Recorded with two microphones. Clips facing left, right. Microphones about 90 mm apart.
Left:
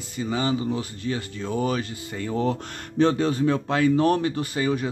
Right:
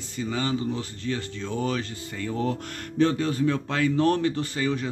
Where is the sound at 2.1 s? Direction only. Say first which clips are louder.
Left 3 dB; 25° left (ahead or behind).